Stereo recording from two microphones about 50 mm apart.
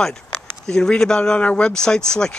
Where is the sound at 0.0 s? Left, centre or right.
Centre.